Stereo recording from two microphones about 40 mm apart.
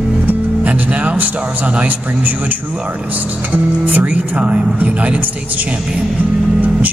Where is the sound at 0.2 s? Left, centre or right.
Right.